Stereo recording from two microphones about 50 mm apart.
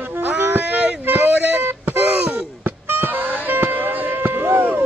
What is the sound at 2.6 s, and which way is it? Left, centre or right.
Music, right.